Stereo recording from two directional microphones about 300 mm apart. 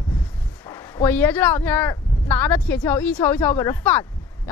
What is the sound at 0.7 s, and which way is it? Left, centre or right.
A woman's voice, centre.